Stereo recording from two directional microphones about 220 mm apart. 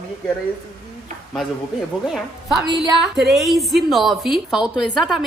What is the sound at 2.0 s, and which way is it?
Speech, centre (ahead or behind).